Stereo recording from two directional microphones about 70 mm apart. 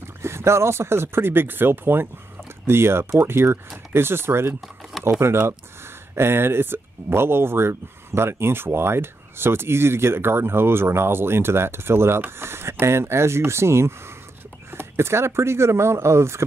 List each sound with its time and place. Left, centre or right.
0.2 s speech: right